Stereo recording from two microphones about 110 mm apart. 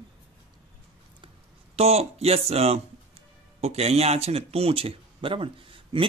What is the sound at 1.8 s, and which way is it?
Speech, 70° right (ahead or behind).